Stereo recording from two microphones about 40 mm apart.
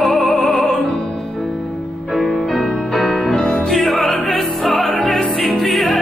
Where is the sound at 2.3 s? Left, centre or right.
Centre.